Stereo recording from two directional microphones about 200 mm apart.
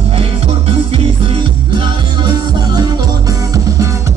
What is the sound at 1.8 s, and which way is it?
Music, 20° right (ahead or behind).